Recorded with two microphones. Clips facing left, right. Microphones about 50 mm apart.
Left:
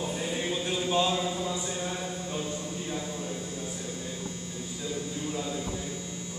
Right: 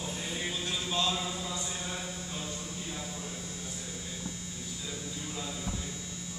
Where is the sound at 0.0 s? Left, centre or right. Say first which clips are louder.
Left 5 dB; centre.